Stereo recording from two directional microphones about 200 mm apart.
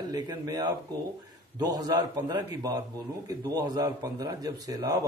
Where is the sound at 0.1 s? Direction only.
20° right (ahead or behind).